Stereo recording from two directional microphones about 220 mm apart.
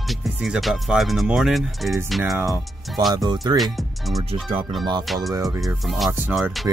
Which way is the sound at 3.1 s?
15° right (ahead or behind).